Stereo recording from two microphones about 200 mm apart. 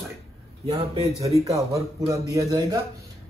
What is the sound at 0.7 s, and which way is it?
Speech, 25° right (ahead or behind).